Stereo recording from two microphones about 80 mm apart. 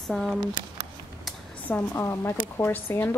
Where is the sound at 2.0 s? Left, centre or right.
Left.